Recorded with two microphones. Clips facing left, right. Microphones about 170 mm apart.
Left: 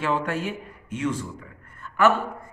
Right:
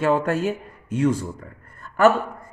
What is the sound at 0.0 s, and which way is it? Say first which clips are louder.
A man's voice: right 6 dB; 45° right (ahead or behind).